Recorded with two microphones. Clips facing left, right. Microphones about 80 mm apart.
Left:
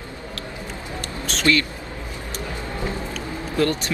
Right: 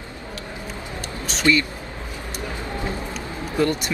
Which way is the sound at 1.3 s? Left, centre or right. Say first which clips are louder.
Right 1 dB; centre.